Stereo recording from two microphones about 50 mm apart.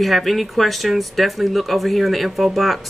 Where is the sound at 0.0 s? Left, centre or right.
Centre.